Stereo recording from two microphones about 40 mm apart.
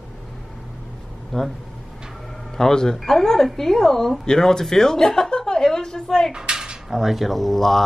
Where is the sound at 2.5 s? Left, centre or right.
Centre.